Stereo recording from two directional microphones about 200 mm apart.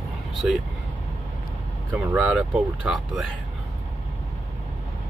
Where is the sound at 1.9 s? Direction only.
10° right (ahead or behind).